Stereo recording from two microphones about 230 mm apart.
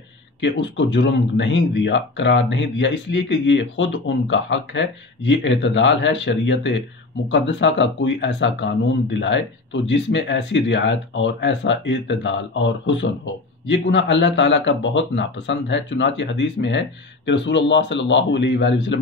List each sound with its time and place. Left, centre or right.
0.4 s speech: left